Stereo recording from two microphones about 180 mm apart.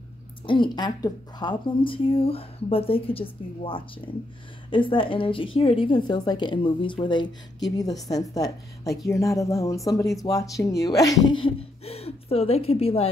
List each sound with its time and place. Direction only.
0.5 s a woman's voice: 25° left (ahead or behind)